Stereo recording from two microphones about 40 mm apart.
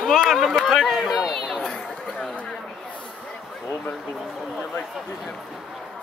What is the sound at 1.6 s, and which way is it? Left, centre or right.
Chatter, left.